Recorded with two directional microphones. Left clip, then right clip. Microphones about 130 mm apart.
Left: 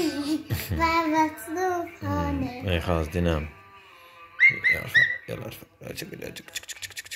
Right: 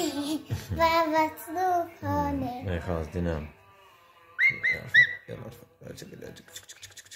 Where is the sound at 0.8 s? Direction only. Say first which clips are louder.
Even; 50° right (ahead or behind).